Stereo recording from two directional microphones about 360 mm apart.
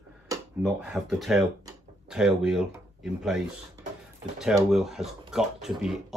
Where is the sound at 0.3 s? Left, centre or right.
Centre.